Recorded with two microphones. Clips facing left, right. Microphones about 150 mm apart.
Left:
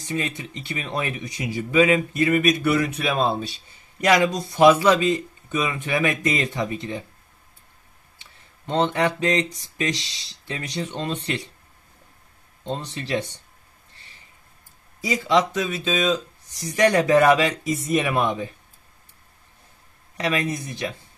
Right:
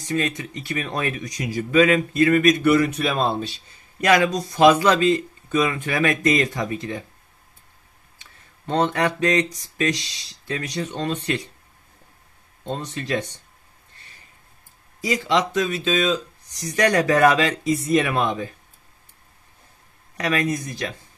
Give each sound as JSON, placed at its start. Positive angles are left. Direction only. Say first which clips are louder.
{"t": 0.1, "sound": "speech", "louder": "right 3 dB", "side_deg": 25}
{"t": 4.0, "sound": "speech", "louder": "right 1 dB", "side_deg": 15}
{"t": 8.6, "sound": "speech", "louder": "even", "side_deg": 20}
{"t": 12.8, "sound": "speech", "louder": "right 1 dB", "side_deg": 30}
{"t": 15.0, "sound": "speech", "louder": "left 1 dB", "side_deg": 0}
{"t": 16.6, "sound": "speech", "louder": "left 1 dB", "side_deg": 25}
{"t": 20.2, "sound": "speech", "louder": "right 2 dB", "side_deg": 20}